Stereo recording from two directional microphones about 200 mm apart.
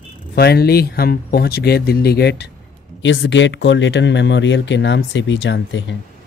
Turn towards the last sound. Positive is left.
turn(degrees=65)  # may be behind; listen again after turning